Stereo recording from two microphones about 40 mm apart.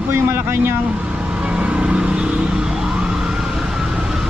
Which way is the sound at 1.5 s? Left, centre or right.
Right.